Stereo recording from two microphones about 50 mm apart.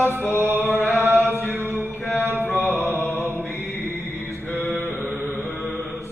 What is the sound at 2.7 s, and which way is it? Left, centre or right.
Mantra, right.